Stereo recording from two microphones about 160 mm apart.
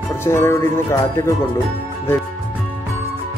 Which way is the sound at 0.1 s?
15° left (ahead or behind).